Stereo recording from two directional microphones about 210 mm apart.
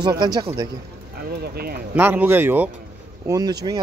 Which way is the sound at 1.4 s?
45° right (ahead or behind).